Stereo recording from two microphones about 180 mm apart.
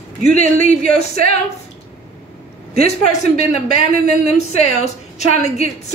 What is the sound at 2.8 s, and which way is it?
A woman's voice, 40° left (ahead or behind).